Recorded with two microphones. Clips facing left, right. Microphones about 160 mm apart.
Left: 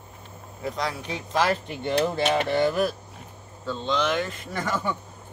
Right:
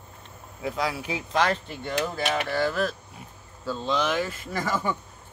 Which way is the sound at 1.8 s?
25° left (ahead or behind).